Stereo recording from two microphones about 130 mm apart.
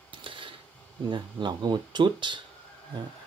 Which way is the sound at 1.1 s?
35° right (ahead or behind).